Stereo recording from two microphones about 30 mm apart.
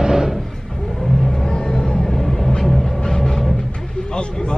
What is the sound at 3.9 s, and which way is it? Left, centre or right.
Vehicle, left.